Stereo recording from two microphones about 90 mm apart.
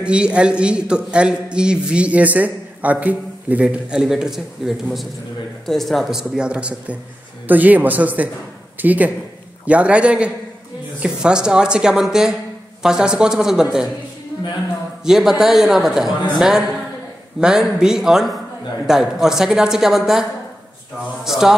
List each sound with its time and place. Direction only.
0.0 s a man's voice: 10° right (ahead or behind)
15.0 s a woman's voice: 5° right (ahead or behind)